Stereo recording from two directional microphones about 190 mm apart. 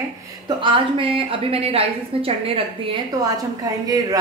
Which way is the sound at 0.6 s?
25° right (ahead or behind).